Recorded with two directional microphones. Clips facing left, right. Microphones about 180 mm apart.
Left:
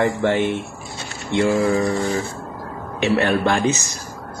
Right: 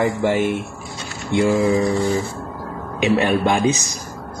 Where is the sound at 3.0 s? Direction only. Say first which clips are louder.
Right 1 dB; 15° right (ahead or behind).